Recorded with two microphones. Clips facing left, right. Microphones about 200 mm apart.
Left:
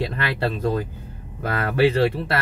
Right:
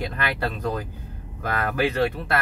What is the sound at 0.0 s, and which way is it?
Speech, 25° left (ahead or behind).